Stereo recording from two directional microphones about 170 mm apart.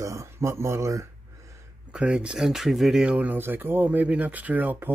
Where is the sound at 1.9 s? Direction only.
5° right (ahead or behind).